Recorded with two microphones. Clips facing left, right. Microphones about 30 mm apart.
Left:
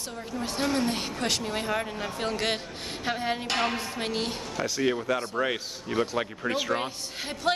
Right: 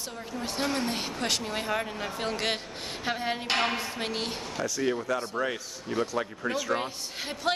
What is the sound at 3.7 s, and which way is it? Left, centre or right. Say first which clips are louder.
Speech: left 1 dB; centre.